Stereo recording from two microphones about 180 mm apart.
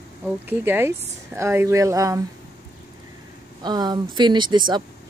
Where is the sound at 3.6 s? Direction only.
25° right (ahead or behind).